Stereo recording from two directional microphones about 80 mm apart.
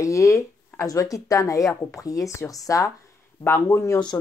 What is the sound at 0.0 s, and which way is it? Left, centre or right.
Speech, left.